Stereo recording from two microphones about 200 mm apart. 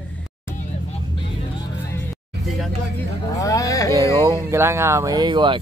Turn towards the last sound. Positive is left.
turn(degrees=-25)  # may be behind; listen again after turning